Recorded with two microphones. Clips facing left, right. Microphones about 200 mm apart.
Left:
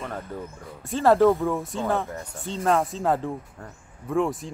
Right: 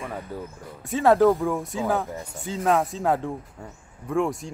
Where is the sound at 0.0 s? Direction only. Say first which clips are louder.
Even; 5° right (ahead or behind).